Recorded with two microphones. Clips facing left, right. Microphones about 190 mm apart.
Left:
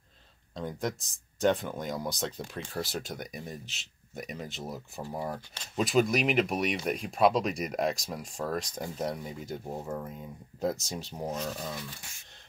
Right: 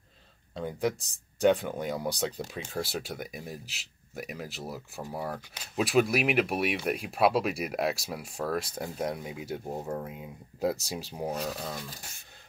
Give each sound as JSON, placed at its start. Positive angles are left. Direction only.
{"t": 0.6, "sound": "speech", "side_deg": -5}
{"t": 11.7, "sound": "speech", "side_deg": -40}